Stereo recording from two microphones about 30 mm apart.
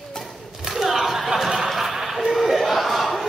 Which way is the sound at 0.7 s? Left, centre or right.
Centre.